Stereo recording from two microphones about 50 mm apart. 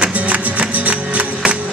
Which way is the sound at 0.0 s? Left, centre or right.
Right.